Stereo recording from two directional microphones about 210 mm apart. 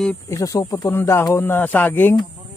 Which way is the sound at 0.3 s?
15° left (ahead or behind).